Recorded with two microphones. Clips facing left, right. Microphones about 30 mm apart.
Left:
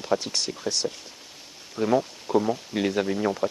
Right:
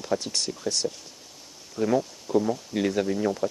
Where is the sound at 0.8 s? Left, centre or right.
Left.